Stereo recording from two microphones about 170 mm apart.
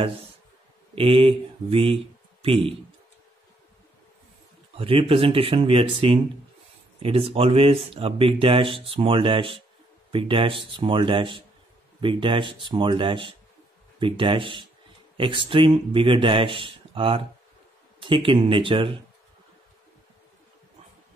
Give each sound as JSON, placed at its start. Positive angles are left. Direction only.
{"t": 0.9, "sound": "speech", "side_deg": -30}
{"t": 4.7, "sound": "speech", "side_deg": -35}